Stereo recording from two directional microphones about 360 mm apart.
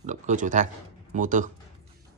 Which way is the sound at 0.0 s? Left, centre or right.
Centre.